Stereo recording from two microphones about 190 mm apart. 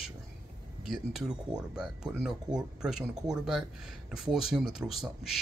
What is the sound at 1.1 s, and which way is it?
Speech, 5° right (ahead or behind).